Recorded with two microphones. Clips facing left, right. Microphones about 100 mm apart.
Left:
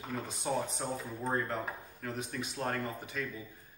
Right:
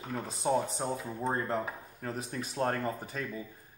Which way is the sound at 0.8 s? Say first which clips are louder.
Right 3 dB; 25° right (ahead or behind).